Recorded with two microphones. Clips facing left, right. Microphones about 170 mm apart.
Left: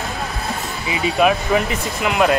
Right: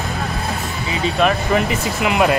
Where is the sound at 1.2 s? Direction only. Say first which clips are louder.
Left 1 dB; 5° left (ahead or behind).